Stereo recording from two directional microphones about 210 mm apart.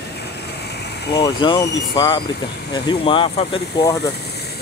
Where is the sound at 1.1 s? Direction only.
20° left (ahead or behind).